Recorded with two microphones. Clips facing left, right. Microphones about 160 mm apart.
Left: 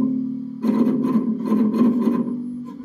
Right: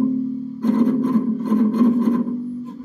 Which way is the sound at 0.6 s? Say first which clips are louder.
Right 1 dB; 15° left (ahead or behind).